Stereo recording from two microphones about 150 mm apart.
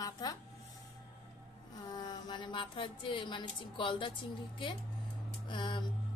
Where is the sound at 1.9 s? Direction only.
30° left (ahead or behind).